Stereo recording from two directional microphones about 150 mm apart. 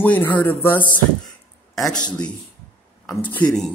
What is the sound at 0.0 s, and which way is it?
A man's voice, 10° left (ahead or behind).